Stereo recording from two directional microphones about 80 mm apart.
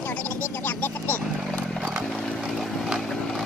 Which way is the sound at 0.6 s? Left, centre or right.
Left.